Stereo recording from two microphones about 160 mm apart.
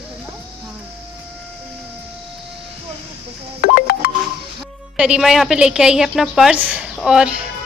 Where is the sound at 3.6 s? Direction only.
75° left (ahead or behind).